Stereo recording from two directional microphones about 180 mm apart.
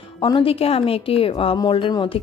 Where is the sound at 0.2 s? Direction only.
30° left (ahead or behind).